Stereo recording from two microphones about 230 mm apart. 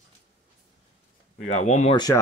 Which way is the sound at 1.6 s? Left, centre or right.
Left.